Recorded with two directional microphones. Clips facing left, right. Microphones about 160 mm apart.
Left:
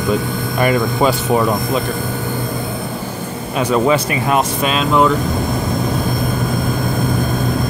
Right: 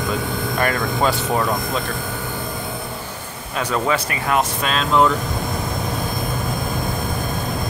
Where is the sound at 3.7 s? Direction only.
20° left (ahead or behind).